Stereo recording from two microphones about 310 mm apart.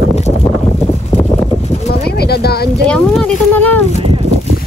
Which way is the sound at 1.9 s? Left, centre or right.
Left.